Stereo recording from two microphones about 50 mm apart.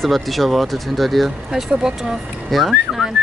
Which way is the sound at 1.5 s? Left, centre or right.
Centre.